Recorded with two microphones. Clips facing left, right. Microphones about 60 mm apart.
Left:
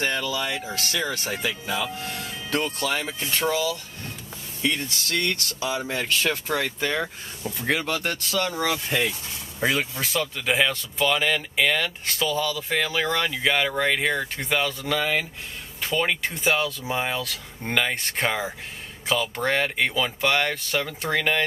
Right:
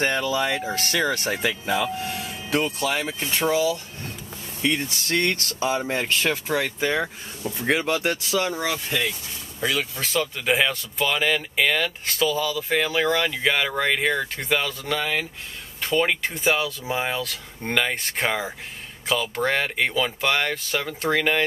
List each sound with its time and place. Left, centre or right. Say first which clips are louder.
0.0 s speech: right 3 dB; right
2.0 s speech: right 2 dB; centre
6.3 s speech: right 2 dB; centre
9.6 s speech: left 1 dB; left
9.9 s speech: right 1 dB; centre